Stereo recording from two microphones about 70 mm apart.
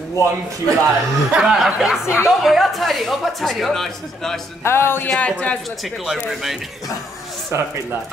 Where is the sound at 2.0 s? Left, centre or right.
Left.